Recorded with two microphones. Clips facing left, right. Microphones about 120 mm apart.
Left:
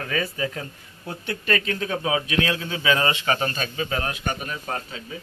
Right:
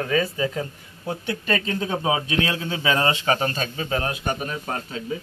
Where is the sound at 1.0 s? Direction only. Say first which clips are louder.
Right 1 dB; 20° right (ahead or behind).